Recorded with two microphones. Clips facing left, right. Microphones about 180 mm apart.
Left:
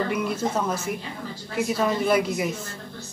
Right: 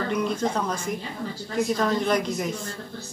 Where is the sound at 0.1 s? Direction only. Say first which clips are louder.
Even; 10° left (ahead or behind).